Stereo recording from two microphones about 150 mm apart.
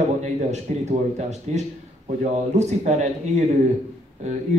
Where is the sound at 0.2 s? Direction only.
50° right (ahead or behind).